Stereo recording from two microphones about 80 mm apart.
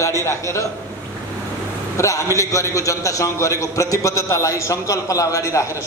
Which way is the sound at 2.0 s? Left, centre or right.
Left.